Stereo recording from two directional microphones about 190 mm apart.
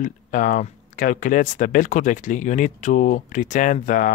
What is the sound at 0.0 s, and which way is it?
Speech, 45° left (ahead or behind).